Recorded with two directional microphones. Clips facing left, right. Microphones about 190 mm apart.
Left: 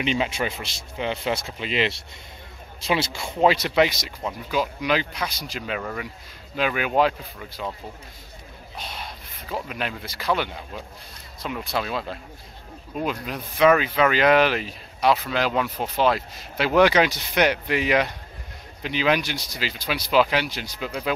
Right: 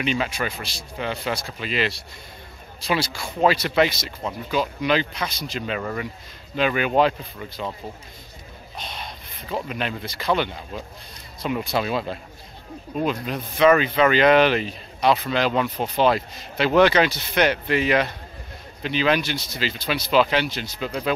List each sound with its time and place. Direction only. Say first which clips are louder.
0.0 s a man's voice: even; 20° left (ahead or behind)
5.8 s speech: right 3 dB; centre (ahead or behind)
8.7 s rub: right 1 dB; 5° left (ahead or behind)
9.7 s speech: right 2 dB; 5° left (ahead or behind)